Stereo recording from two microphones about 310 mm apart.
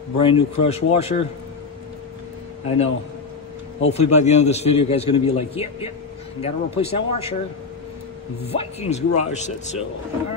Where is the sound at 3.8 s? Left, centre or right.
Left.